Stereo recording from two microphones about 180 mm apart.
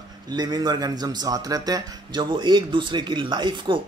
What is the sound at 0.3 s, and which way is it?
A man's voice, 20° right (ahead or behind).